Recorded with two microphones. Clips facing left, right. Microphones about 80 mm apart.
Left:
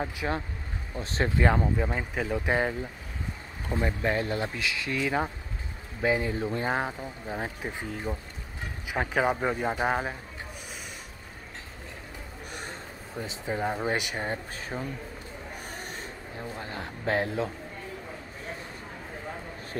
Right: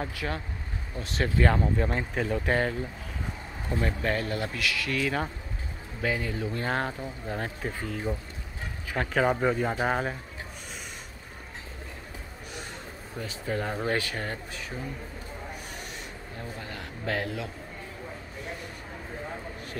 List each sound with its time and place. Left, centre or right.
0.0 s speech: left
1.8 s speech: centre
3.8 s speech: centre
6.6 s speech: centre
13.2 s speech: centre
14.7 s speech: left
16.3 s speech: left